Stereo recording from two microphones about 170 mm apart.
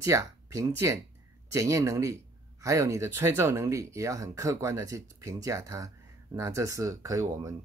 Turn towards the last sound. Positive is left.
turn(degrees=-20)  # may be behind; listen again after turning